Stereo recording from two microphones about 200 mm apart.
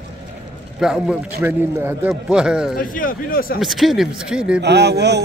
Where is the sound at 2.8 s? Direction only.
45° left (ahead or behind).